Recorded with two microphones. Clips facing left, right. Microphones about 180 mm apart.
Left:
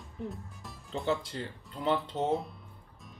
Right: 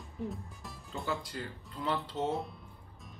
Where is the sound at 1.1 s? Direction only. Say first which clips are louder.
Left 5 dB; 25° left (ahead or behind).